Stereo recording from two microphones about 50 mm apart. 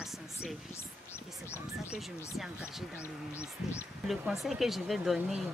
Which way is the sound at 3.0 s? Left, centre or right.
Left.